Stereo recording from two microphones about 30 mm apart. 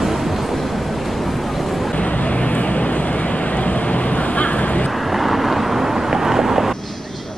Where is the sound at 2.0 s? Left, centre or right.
Left.